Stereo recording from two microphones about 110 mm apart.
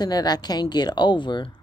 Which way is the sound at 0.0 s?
40° left (ahead or behind).